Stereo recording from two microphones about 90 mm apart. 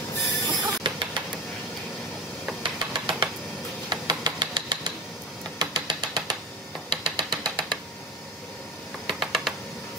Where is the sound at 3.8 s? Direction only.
55° right (ahead or behind).